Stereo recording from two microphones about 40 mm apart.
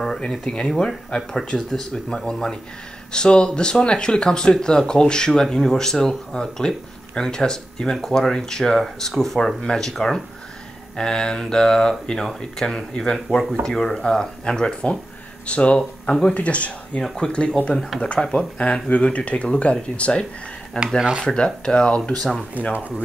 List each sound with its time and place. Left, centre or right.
0.3 s speech: centre
11.0 s speech: centre
16.3 s speech: left
17.0 s speech: centre
21.2 s speech: centre
22.6 s speech: left